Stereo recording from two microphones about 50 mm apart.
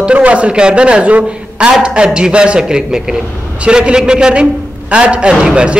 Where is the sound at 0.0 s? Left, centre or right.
Right.